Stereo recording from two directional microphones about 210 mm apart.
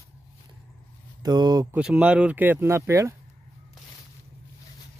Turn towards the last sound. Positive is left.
turn(degrees=-15)  # may be behind; listen again after turning